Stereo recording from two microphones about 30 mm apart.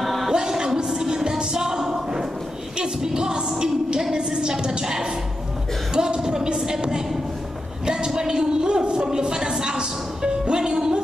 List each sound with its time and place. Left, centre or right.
0.0 s music: centre
0.3 s music: right
3.2 s a sound: right